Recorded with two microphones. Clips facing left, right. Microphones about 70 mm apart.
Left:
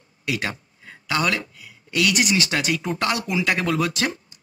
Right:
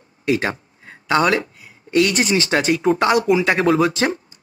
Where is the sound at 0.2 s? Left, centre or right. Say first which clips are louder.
Right 7 dB; right.